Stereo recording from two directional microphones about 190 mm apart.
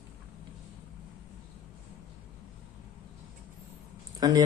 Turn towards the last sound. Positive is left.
turn(degrees=-20)  # may be behind; listen again after turning